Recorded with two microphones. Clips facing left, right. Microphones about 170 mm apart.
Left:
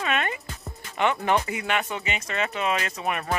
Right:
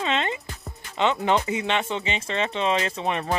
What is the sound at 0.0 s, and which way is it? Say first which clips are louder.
Music: right 1 dB; 25° right (ahead or behind).